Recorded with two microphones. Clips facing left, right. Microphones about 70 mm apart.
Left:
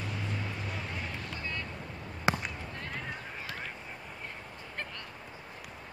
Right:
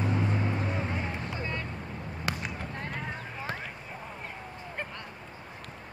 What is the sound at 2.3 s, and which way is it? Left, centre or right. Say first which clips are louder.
Basketball bounce: left 5 dB; left.